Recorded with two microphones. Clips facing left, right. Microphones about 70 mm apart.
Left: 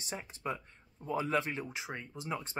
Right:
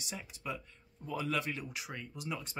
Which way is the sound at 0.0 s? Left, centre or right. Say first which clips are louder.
Left 3 dB; left.